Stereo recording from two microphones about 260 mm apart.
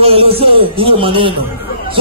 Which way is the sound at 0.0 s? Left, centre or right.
Right.